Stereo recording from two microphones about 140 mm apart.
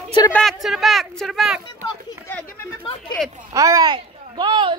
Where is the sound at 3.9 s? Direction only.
35° right (ahead or behind).